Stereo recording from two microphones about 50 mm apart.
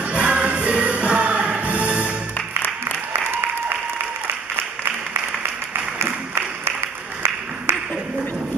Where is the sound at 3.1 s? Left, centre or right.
Right.